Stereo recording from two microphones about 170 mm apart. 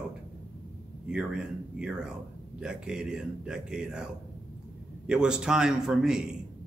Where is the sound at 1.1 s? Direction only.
5° right (ahead or behind).